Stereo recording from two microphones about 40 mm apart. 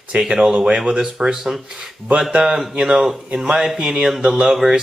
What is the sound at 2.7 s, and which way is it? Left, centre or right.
Speech, right.